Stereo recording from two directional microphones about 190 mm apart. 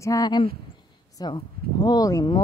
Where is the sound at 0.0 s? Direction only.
20° left (ahead or behind).